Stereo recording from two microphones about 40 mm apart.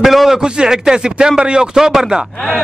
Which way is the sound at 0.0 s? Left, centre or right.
Centre.